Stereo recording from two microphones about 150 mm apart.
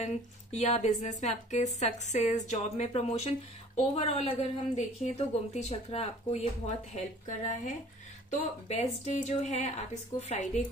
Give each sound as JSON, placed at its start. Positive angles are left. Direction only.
{"t": 0.0, "sound": "a woman's voice", "side_deg": 50}
{"t": 8.4, "sound": "a woman's voice", "side_deg": 45}